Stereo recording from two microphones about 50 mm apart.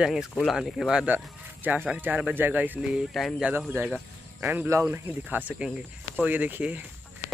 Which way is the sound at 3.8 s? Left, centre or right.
Right.